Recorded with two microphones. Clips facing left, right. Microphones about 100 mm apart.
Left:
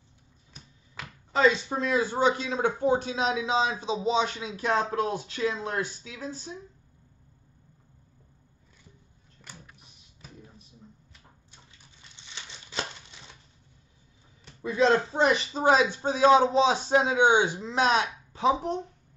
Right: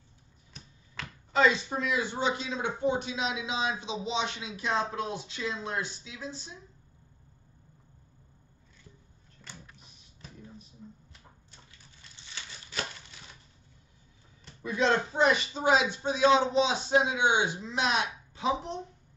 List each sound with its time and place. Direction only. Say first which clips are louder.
1.3 s speech: left 2 dB; 35° left (ahead or behind)
9.4 s power windows: even; 10° left (ahead or behind)
12.4 s a sound: left 2 dB; 20° left (ahead or behind)
14.6 s speech: left 4 dB; 30° left (ahead or behind)